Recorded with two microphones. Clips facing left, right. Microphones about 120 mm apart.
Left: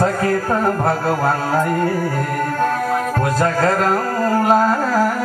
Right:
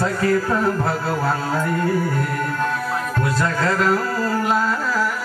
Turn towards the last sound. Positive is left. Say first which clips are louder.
# left 5 dB
turn(degrees=45)  # may be behind; listen again after turning